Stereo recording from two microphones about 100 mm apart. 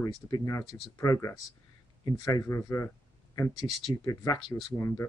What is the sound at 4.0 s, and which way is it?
Speech, 35° left (ahead or behind).